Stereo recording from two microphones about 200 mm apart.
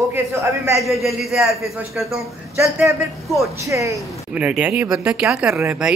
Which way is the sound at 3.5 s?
15° right (ahead or behind).